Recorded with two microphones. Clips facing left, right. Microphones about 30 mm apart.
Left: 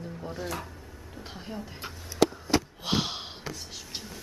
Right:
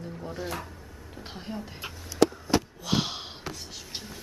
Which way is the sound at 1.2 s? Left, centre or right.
Centre.